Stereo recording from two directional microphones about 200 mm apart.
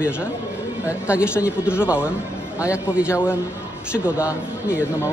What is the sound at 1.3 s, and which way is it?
Speech, 10° left (ahead or behind).